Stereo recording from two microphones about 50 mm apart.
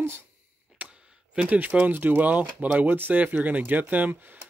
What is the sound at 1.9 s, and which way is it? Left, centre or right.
Speech, right.